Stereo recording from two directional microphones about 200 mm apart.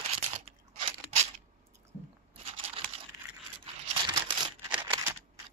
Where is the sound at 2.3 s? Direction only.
30° right (ahead or behind).